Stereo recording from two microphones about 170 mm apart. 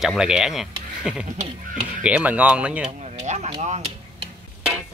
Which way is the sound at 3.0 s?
40° right (ahead or behind).